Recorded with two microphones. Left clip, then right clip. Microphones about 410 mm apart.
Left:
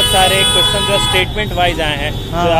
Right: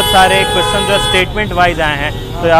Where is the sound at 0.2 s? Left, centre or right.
Centre.